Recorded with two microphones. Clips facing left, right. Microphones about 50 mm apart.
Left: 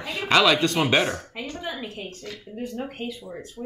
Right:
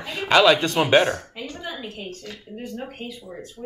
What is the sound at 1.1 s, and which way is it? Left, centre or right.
Speech, centre.